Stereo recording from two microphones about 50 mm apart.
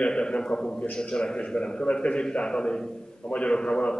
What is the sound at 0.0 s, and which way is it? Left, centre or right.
A man's voice, left.